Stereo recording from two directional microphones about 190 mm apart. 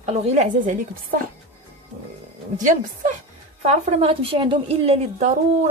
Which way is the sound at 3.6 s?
35° right (ahead or behind).